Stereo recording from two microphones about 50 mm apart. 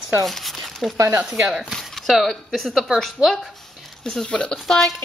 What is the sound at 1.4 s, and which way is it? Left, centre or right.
Speech, centre.